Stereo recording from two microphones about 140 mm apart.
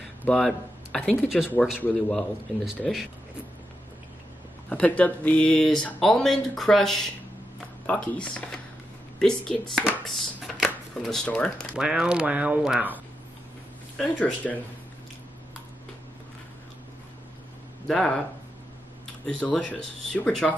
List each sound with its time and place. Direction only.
0.3 s speech: 5° left (ahead or behind)
4.6 s speech: 10° left (ahead or behind)
11.7 s speech: 5° right (ahead or behind)
13.9 s speech: 10° left (ahead or behind)
17.8 s speech: 5° left (ahead or behind)
19.2 s speech: 5° left (ahead or behind)